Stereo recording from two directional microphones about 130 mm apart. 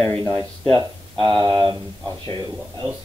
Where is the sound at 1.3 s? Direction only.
35° right (ahead or behind).